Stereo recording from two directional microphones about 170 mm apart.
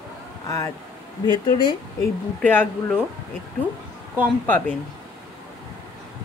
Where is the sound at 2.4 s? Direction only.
10° left (ahead or behind).